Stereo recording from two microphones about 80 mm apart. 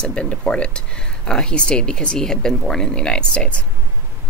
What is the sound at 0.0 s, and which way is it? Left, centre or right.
Speech, centre.